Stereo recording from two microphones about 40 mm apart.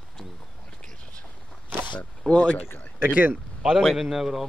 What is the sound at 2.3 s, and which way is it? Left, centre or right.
Speech, left.